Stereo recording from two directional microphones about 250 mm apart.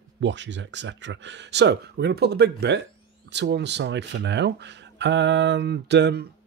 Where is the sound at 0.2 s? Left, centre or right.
Right.